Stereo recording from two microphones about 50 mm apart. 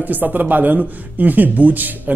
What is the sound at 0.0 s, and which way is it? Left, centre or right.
Speech, right.